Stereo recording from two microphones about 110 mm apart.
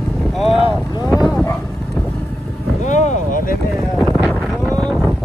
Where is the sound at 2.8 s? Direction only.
90° left.